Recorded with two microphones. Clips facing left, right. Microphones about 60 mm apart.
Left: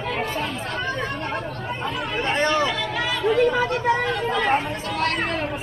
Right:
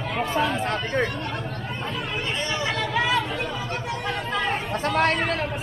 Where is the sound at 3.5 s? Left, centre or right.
Left.